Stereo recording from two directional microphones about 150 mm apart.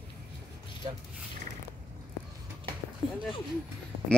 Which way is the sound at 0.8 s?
30° right (ahead or behind).